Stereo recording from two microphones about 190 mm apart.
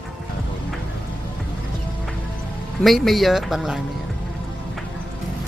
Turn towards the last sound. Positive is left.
turn(degrees=0)  # may be behind; listen again after turning